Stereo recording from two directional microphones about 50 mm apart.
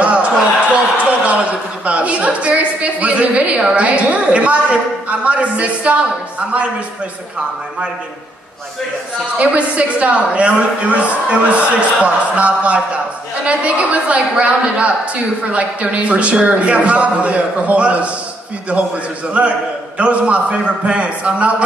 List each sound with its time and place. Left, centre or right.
0.0 s a sound: right
1.9 s a woman's voice: right
9.4 s a woman's voice: right